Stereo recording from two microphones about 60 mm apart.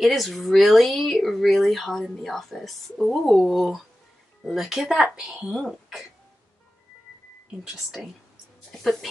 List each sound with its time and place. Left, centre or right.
0.0 s speech: centre
7.6 s speech: centre
8.7 s speech: centre